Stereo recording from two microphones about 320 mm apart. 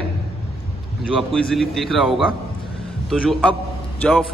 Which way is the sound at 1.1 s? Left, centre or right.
Centre.